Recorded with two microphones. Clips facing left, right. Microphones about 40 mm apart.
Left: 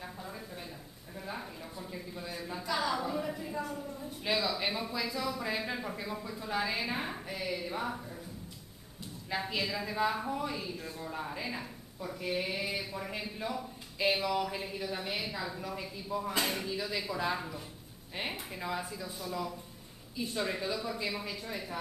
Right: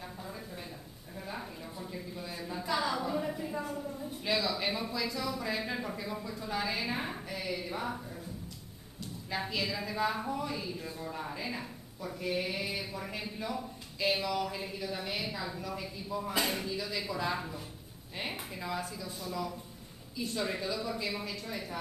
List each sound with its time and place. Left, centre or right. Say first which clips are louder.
0.0 s a sound: even; centre
4.2 s a woman's voice: even; centre
9.5 s speech: even; centre
16.6 s a woman's voice: even; centre
18.2 s speech: left 1 dB; centre